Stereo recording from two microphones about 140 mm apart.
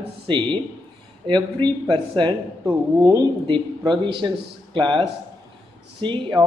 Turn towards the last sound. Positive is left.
turn(degrees=-35)  # may be behind; listen again after turning